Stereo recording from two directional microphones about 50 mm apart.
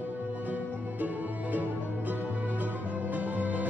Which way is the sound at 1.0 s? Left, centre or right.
Right.